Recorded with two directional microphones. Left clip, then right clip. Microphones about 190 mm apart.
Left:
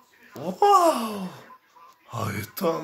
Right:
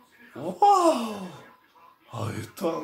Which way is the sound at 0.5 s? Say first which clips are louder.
Left 1 dB; 15° left (ahead or behind).